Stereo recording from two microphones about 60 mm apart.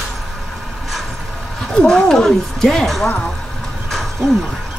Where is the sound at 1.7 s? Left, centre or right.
Centre.